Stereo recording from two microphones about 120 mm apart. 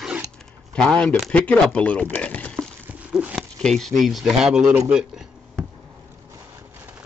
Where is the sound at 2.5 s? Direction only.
10° right (ahead or behind).